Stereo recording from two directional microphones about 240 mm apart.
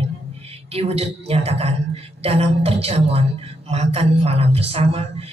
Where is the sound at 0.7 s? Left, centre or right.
Right.